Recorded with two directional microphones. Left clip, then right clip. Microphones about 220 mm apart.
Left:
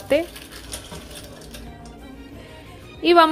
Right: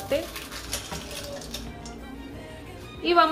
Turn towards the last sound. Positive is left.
turn(degrees=35)  # may be behind; listen again after turning